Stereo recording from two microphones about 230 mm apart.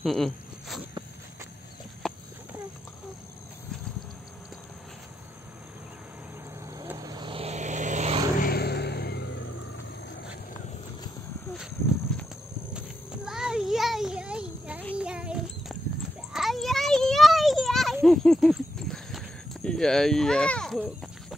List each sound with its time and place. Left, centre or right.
0.0 s speech: centre
2.0 s clip-clop: centre
6.8 s vehicle: centre
8.4 s a sound: left
12.1 s clip-clop: centre
12.7 s a sound: centre